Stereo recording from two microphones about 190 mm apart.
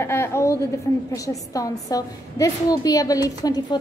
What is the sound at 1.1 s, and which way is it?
A woman's voice, 15° left (ahead or behind).